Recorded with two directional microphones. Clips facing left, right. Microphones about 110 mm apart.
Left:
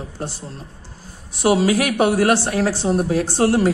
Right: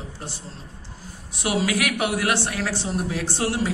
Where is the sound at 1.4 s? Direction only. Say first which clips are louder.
Left 7 dB; 35° left (ahead or behind).